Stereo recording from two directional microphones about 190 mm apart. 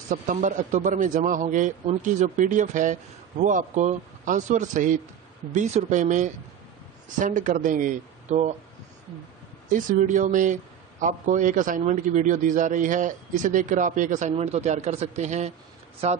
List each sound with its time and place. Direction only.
0.1 s speech: 40° right (ahead or behind)
9.7 s speech: 45° right (ahead or behind)